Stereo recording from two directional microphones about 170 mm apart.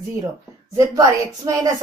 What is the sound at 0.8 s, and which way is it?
Speech, 20° right (ahead or behind).